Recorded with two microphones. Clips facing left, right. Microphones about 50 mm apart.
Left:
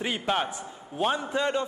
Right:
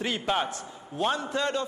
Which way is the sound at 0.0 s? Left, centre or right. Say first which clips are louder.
Even; centre.